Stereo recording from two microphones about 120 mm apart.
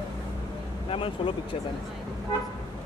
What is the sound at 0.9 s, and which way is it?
Speech, 45° left (ahead or behind).